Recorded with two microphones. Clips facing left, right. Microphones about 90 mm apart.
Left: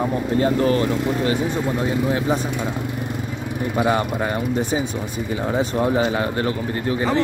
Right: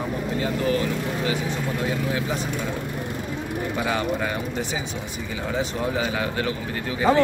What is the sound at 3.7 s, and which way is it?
Speech, 35° left (ahead or behind).